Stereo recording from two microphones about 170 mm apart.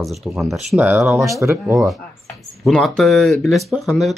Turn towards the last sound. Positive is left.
turn(degrees=0)  # may be behind; listen again after turning